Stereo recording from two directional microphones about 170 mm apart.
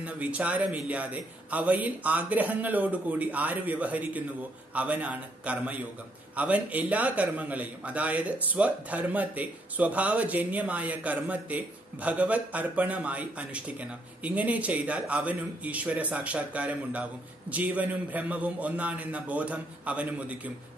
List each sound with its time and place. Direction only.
0.0 s a man's voice: 10° right (ahead or behind)